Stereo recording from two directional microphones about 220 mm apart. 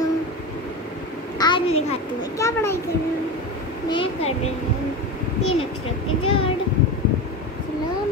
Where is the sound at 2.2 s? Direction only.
15° left (ahead or behind).